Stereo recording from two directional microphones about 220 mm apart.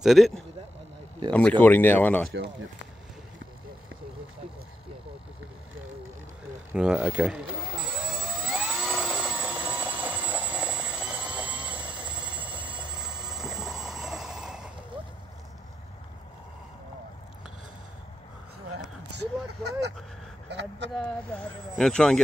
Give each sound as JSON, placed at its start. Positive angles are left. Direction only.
{"t": 0.0, "sound": "speech", "side_deg": 0}
{"t": 1.3, "sound": "speech", "side_deg": 5}
{"t": 6.7, "sound": "speech", "side_deg": -5}
{"t": 8.1, "sound": "jet engine", "side_deg": 0}
{"t": 12.5, "sound": "vehicle", "side_deg": -5}
{"t": 19.0, "sound": "a sound", "side_deg": -50}
{"t": 20.9, "sound": "a sound", "side_deg": 5}